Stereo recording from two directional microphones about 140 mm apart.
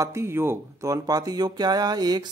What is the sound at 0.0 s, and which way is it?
Speech, 20° right (ahead or behind).